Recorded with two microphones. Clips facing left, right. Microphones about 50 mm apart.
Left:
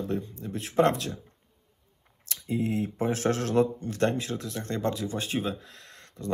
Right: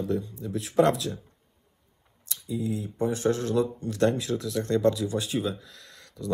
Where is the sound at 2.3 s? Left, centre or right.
Left.